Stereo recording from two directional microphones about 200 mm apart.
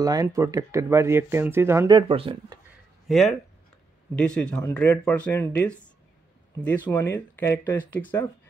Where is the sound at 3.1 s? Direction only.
Centre (ahead or behind).